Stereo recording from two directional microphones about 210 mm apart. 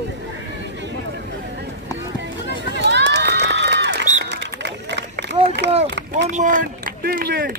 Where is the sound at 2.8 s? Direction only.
55° right (ahead or behind).